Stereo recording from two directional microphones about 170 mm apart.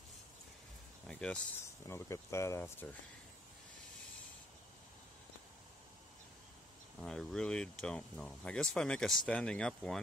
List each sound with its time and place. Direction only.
1.0 s a sound: 5° left (ahead or behind)
1.9 s speech: 15° left (ahead or behind)
7.0 s speech: 5° left (ahead or behind)